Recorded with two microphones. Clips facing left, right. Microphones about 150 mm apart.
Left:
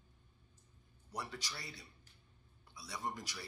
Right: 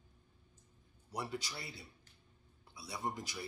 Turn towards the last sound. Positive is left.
turn(degrees=-25)  # may be behind; listen again after turning